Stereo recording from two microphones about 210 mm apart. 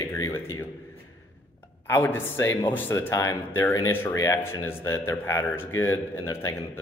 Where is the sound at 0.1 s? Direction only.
15° left (ahead or behind).